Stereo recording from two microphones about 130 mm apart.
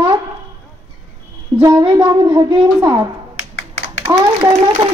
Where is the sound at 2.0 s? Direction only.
40° right (ahead or behind).